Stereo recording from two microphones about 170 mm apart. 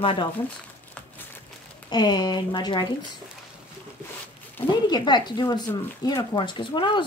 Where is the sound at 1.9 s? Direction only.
25° left (ahead or behind).